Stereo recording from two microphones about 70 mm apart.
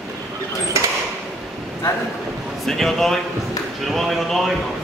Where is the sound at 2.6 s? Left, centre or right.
Centre.